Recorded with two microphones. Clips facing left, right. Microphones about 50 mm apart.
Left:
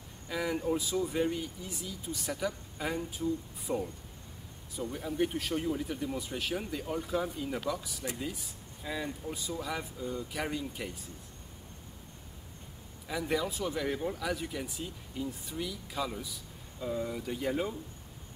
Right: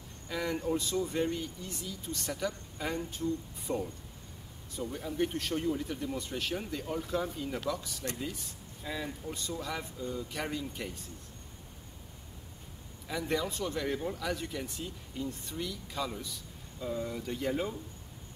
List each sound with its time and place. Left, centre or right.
0.3 s speech: centre
13.1 s speech: centre